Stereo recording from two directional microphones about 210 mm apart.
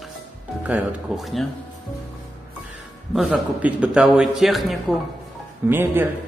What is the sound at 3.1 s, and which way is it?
A man's voice, centre (ahead or behind).